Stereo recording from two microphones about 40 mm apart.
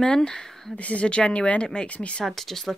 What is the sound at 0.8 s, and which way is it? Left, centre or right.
Speech, left.